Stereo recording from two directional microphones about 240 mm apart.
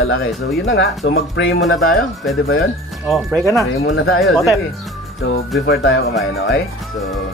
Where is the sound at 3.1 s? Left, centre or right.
Centre.